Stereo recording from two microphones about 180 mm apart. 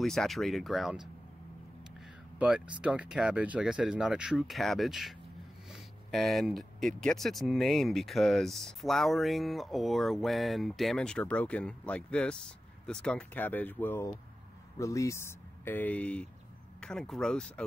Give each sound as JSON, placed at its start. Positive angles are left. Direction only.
{"t": 0.0, "sound": "speech", "side_deg": 0}
{"t": 2.3, "sound": "speech", "side_deg": -5}